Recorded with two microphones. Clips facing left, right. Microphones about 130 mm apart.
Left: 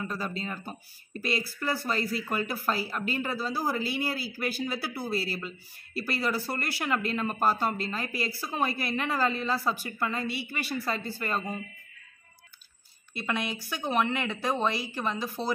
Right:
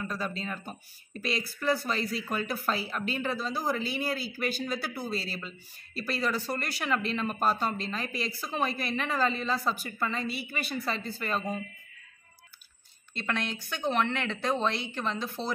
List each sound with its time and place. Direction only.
0.0 s speech: 10° left (ahead or behind)
1.6 s speech: 5° left (ahead or behind)
13.1 s speech: 10° left (ahead or behind)